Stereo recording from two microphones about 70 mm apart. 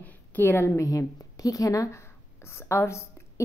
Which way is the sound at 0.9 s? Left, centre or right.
Left.